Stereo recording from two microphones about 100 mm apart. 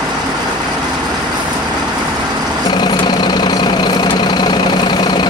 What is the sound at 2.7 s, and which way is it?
Vehicle, 50° left (ahead or behind).